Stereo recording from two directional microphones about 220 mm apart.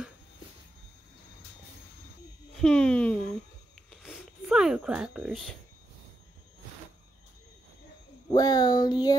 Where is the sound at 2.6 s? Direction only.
5° left (ahead or behind).